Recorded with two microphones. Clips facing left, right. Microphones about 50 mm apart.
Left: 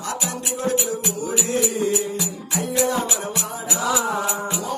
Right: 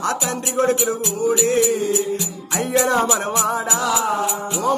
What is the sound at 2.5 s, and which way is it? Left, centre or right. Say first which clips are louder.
Music: right 4 dB; right.